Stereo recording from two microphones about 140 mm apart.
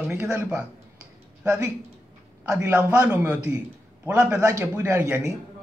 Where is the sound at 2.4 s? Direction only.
20° right (ahead or behind).